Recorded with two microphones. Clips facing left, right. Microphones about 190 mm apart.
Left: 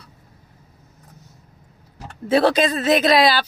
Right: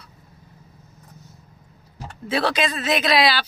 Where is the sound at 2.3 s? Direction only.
45° left (ahead or behind).